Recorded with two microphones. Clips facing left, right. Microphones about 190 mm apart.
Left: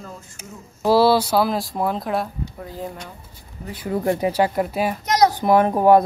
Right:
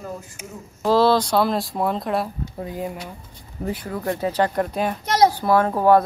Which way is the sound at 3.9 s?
20° left (ahead or behind).